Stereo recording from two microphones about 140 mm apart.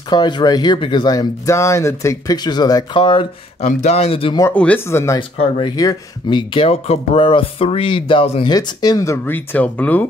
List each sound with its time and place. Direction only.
0.1 s speech: 30° left (ahead or behind)
3.6 s speech: 55° left (ahead or behind)
4.6 s speech: 15° left (ahead or behind)
5.4 s speech: 35° left (ahead or behind)
8.5 s speech: 30° left (ahead or behind); by 10.0 s 10° left (ahead or behind)